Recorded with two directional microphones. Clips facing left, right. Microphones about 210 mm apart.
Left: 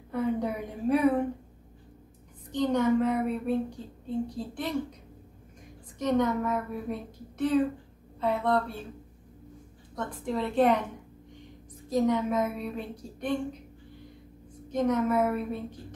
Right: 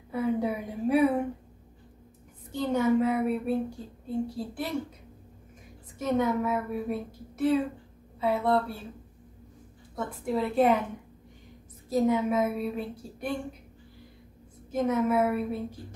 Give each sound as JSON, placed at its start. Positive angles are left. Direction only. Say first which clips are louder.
{"t": 0.1, "sound": "a woman's voice", "louder": "right 1 dB", "side_deg": -5}
{"t": 2.5, "sound": "a woman's voice", "louder": "even", "side_deg": -10}
{"t": 5.9, "sound": "a woman's voice", "louder": "even", "side_deg": -5}
{"t": 9.9, "sound": "a woman's voice", "louder": "right 2 dB", "side_deg": -5}
{"t": 11.9, "sound": "a woman's voice", "louder": "right 1 dB", "side_deg": -5}
{"t": 14.7, "sound": "a woman's voice", "louder": "even", "side_deg": -10}